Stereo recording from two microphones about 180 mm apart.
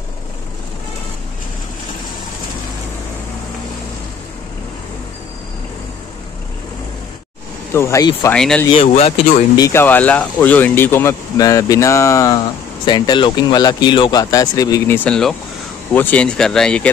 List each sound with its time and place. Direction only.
7.7 s speech: 15° left (ahead or behind)
8.7 s speech: 30° left (ahead or behind)
9.6 s speech: 15° left (ahead or behind)
15.0 s speech: 5° left (ahead or behind)